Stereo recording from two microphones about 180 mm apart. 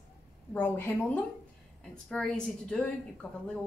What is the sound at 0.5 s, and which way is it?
A woman's voice, 10° left (ahead or behind).